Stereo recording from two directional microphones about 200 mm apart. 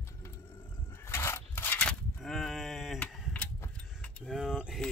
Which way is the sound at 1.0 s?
15° left (ahead or behind).